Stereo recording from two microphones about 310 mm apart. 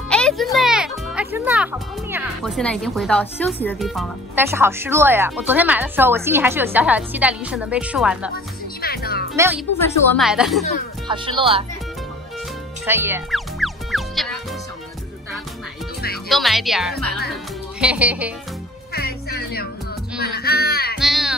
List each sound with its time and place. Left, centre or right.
0.1 s music: centre
3.6 s speech: centre
8.8 s music: left
9.8 s speech: centre
11.1 s speech: centre
12.8 s music: centre
16.3 s speech: centre
18.9 s music: left
21.0 s music: centre